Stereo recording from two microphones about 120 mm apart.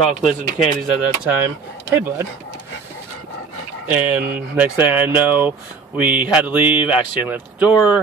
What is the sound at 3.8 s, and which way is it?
Speech, 15° right (ahead or behind).